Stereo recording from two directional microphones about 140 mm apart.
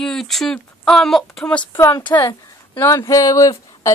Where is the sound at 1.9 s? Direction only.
35° left (ahead or behind).